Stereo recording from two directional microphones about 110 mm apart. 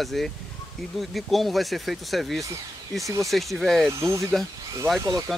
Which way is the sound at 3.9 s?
25° right (ahead or behind).